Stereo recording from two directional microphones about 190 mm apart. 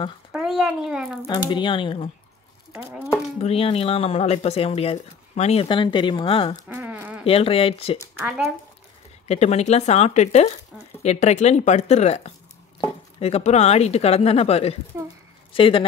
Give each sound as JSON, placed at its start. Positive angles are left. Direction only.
{"t": 0.3, "sound": "a child's voice", "side_deg": -5}
{"t": 1.2, "sound": "speech", "side_deg": 20}
{"t": 3.3, "sound": "speech", "side_deg": 30}
{"t": 6.7, "sound": "a sound", "side_deg": -10}
{"t": 7.2, "sound": "speech", "side_deg": 30}
{"t": 8.0, "sound": "speech", "side_deg": -10}
{"t": 9.3, "sound": "speech", "side_deg": 35}